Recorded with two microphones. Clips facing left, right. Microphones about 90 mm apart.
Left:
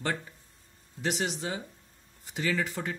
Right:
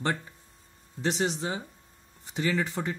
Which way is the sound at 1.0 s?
30° right (ahead or behind).